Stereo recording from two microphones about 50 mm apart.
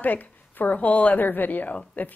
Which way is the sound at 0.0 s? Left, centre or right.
Left.